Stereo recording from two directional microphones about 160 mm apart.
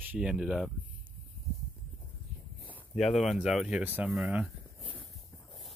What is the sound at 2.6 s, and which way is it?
Speech, 5° left (ahead or behind).